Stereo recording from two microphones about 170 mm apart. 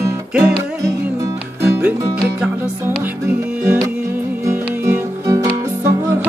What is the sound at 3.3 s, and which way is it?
Music, 10° right (ahead or behind).